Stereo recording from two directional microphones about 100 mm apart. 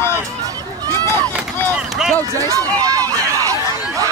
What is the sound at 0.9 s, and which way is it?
Run, 25° left (ahead or behind).